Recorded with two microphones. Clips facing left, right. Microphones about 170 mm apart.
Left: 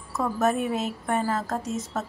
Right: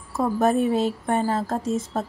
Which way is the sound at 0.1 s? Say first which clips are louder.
Right 4 dB; 30° right (ahead or behind).